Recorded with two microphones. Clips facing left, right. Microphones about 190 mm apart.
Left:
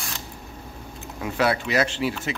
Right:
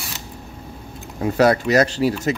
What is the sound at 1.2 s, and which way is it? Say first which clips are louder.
Speech: right 7 dB; 40° right (ahead or behind).